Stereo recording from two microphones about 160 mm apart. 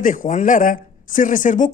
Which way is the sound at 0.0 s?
55° left (ahead or behind).